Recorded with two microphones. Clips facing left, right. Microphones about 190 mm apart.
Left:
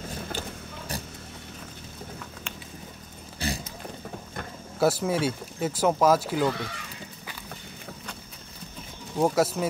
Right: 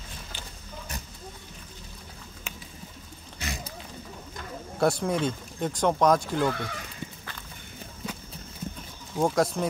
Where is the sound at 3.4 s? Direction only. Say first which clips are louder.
Left 6 dB; 30° left (ahead or behind).